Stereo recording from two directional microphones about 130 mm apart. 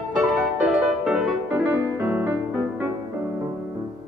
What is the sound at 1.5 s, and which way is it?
Music, 15° right (ahead or behind).